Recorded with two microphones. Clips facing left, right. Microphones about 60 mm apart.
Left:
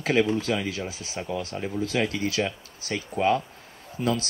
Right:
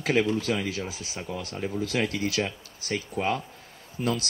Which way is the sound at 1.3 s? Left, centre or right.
Left.